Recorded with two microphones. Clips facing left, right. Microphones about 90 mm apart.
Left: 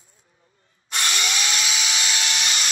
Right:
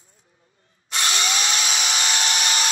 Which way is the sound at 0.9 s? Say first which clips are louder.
Right 1 dB; 30° right (ahead or behind).